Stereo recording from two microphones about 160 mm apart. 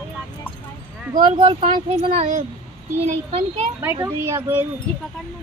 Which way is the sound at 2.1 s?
50° right (ahead or behind).